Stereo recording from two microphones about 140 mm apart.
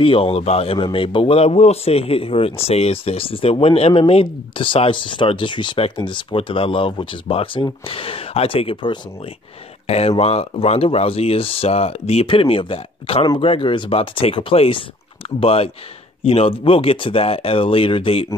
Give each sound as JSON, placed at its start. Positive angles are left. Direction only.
{"t": 0.0, "sound": "speech", "side_deg": 40}